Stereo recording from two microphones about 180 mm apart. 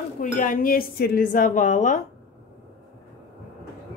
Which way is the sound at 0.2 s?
50° left (ahead or behind).